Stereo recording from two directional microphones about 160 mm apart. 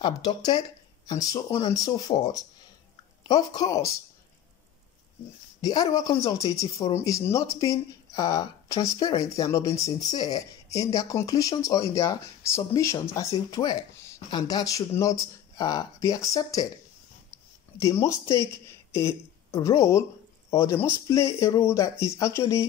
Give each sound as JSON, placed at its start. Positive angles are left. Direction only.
{"t": 0.0, "sound": "speech", "side_deg": 25}
{"t": 5.6, "sound": "speech", "side_deg": 25}
{"t": 17.3, "sound": "a sound", "side_deg": 20}
{"t": 18.9, "sound": "speech", "side_deg": 20}